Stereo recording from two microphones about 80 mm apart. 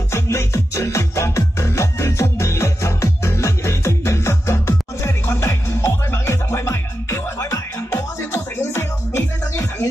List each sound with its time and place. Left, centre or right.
0.1 s music: left